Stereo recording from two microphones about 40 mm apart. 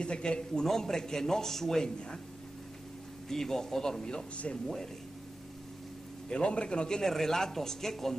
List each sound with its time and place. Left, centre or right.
0.0 s a man's voice: left
3.3 s speech: centre
6.2 s a man's voice: left
7.0 s speech: centre